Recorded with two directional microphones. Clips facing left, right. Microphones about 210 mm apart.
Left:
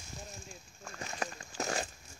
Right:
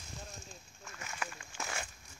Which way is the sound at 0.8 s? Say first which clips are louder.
Left 5 dB; 35° left (ahead or behind).